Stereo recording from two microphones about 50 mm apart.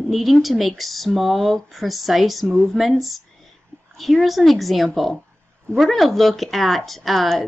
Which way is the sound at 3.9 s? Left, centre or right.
Centre.